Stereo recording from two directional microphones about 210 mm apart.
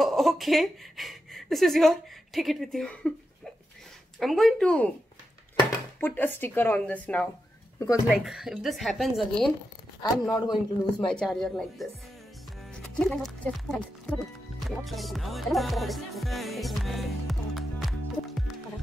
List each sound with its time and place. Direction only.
0.0 s speech: centre (ahead or behind)
4.2 s speech: centre (ahead or behind)
5.9 s speech: 10° left (ahead or behind)
10.2 s speech: 20° left (ahead or behind)
11.1 s speech: 5° left (ahead or behind)
14.6 s music: centre (ahead or behind)